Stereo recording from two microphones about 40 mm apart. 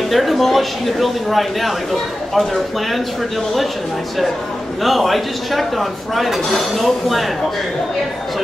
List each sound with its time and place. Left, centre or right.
0.1 s speech: centre
4.8 s speech: centre